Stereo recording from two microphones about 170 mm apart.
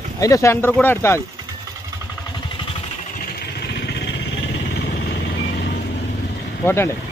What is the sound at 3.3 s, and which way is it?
Vehicle, 70° left (ahead or behind).